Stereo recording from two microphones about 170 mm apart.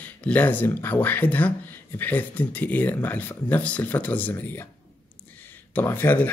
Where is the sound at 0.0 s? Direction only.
10° left (ahead or behind).